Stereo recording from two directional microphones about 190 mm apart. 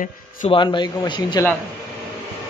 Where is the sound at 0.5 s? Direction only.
25° left (ahead or behind).